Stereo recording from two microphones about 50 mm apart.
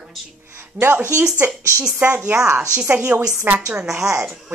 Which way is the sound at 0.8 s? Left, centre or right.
Right.